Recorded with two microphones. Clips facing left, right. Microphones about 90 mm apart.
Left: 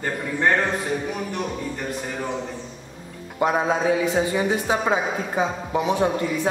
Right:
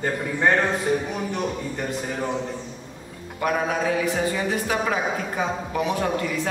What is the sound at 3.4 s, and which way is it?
A man's voice, 20° left (ahead or behind).